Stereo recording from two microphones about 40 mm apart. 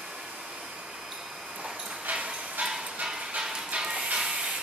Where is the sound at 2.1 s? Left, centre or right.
Right.